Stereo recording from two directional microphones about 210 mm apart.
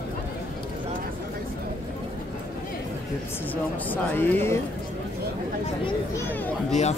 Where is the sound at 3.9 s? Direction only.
10° left (ahead or behind).